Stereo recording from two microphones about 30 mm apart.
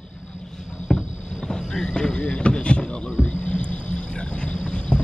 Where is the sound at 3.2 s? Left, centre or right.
Left.